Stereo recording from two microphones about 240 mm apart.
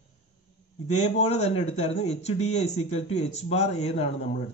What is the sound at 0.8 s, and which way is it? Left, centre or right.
Speech, left.